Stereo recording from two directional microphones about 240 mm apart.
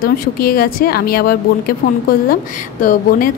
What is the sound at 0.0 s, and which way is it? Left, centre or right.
A woman's voice, left.